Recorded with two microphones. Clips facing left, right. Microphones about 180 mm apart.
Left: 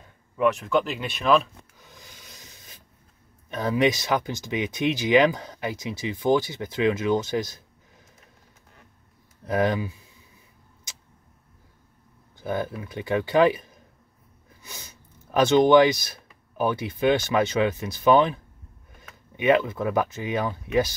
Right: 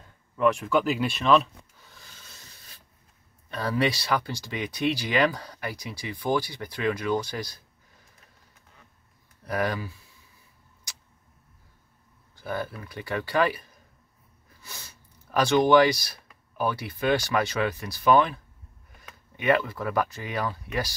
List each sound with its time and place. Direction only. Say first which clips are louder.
0.4 s speech: left 1 dB; centre (ahead or behind)
1.8 s rub: left 4 dB; 15° left (ahead or behind)
3.4 s speech: left 4 dB; 20° left (ahead or behind)
9.4 s speech: left 5 dB; 20° left (ahead or behind)
12.4 s speech: left 4 dB; 20° left (ahead or behind)